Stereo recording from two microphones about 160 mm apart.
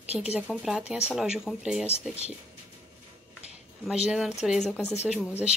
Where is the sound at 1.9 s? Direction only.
40° left (ahead or behind).